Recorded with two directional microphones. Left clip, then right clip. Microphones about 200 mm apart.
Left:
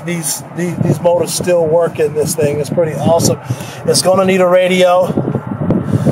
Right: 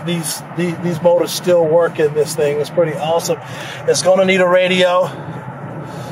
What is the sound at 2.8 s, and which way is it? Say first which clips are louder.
Speech: left 4 dB; 10° left (ahead or behind).